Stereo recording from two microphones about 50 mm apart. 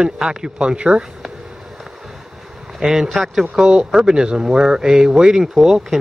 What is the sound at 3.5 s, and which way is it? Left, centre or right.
Speech, centre.